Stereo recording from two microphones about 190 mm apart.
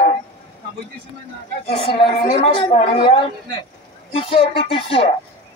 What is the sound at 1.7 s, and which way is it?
A man's voice, 30° left (ahead or behind).